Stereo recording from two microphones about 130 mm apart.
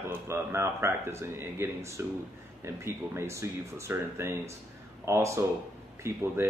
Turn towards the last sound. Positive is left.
turn(degrees=-20)  # may be behind; listen again after turning